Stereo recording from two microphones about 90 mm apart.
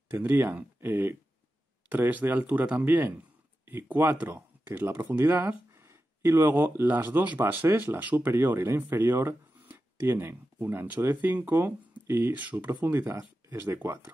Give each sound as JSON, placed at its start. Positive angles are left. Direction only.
{"t": 0.1, "sound": "speech", "side_deg": -25}